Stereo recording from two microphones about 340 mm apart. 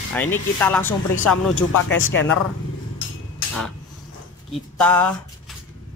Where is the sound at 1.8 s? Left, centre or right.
Left.